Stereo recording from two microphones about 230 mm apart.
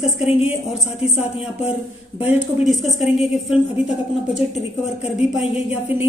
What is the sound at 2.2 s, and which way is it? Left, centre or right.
Speech, centre.